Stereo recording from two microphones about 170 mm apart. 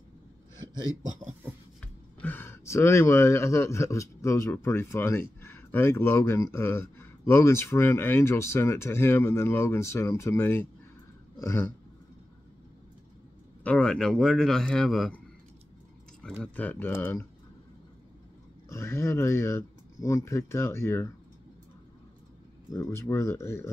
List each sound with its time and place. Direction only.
2.1 s speech: 10° left (ahead or behind)
13.7 s speech: 5° left (ahead or behind)
16.2 s speech: 5° left (ahead or behind)
18.7 s speech: 15° left (ahead or behind)
22.7 s speech: 15° left (ahead or behind)